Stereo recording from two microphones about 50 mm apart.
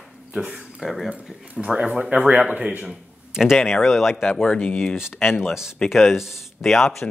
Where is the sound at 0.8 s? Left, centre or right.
Centre.